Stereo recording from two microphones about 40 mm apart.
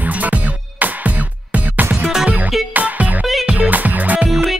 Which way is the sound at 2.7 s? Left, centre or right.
Right.